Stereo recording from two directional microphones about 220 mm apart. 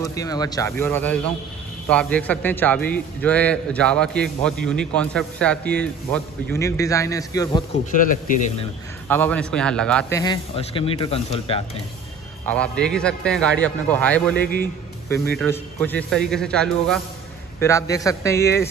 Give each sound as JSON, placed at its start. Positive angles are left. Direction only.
{"t": 0.0, "sound": "a man's voice", "side_deg": 15}
{"t": 7.9, "sound": "speech", "side_deg": 40}
{"t": 9.1, "sound": "a man's voice", "side_deg": 5}
{"t": 12.4, "sound": "a man's voice", "side_deg": 5}
{"t": 17.6, "sound": "a man's voice", "side_deg": 15}